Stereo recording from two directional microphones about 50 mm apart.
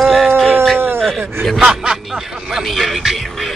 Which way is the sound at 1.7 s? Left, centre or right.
Centre.